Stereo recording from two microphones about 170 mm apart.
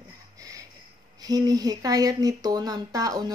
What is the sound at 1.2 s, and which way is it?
Speech, 20° right (ahead or behind).